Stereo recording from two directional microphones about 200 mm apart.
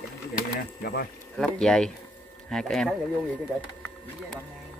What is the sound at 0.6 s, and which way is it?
Speech, 50° left (ahead or behind).